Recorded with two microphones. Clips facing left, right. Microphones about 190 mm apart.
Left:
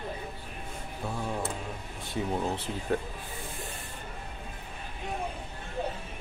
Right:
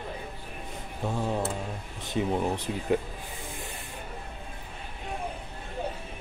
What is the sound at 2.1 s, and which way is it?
Speech, 20° right (ahead or behind).